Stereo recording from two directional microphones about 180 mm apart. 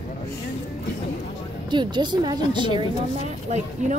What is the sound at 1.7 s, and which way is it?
Speech, 25° right (ahead or behind).